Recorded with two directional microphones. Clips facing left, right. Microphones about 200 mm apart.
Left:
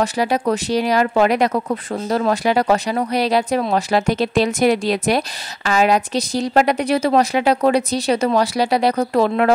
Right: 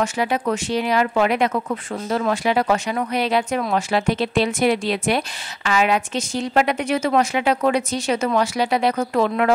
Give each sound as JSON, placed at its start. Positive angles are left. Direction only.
{"t": 0.0, "sound": "speech", "side_deg": 35}